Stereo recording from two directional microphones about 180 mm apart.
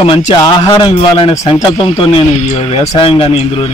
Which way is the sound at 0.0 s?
25° left (ahead or behind).